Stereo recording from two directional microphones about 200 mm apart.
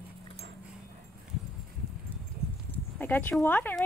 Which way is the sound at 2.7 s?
10° left (ahead or behind).